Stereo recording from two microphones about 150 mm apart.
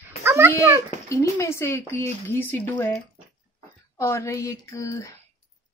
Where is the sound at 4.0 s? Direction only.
20° left (ahead or behind).